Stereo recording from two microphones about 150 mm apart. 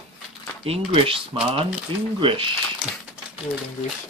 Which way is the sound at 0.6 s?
40° right (ahead or behind).